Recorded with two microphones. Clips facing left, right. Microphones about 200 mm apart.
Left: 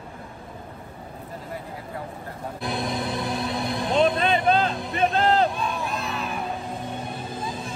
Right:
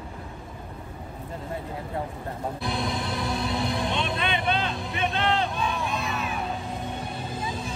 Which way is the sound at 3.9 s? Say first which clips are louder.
Left 7 dB; 35° left (ahead or behind).